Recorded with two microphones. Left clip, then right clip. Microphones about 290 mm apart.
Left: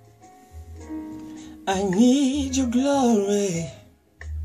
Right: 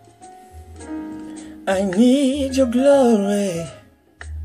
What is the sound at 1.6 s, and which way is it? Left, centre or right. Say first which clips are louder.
Music: right 4 dB; centre.